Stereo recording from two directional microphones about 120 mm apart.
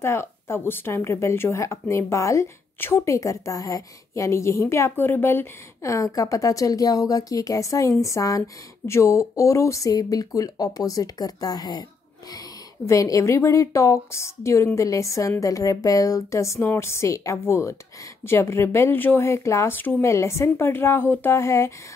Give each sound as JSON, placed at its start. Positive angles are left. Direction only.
{"t": 0.0, "sound": "speech", "side_deg": 20}